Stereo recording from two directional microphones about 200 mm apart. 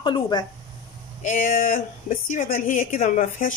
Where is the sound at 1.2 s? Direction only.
40° left (ahead or behind).